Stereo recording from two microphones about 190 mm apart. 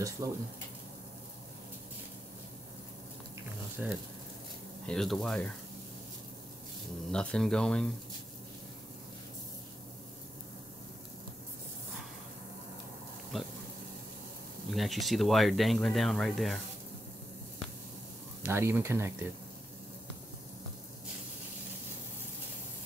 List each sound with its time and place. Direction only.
0.2 s speech: 20° right (ahead or behind)
3.8 s speech: 10° right (ahead or behind)
4.8 s speech: centre (ahead or behind)
7.1 s speech: 5° left (ahead or behind)
13.3 s speech: centre (ahead or behind)
14.7 s speech: centre (ahead or behind)
18.4 s speech: 10° right (ahead or behind)